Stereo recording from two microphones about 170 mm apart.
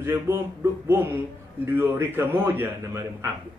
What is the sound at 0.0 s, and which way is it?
Speech, 15° right (ahead or behind).